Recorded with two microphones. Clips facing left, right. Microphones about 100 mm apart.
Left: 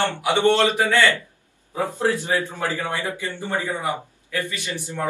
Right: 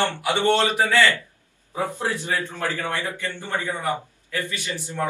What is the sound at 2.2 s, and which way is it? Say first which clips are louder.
Speech: left 2 dB; 15° left (ahead or behind).